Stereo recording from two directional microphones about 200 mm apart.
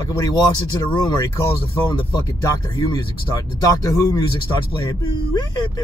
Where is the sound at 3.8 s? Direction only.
15° left (ahead or behind).